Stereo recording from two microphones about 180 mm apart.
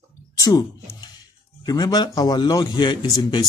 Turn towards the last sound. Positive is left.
turn(degrees=25)  # may be behind; listen again after turning